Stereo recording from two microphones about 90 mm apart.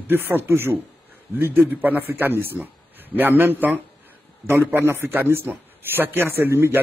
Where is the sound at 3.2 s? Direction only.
20° right (ahead or behind).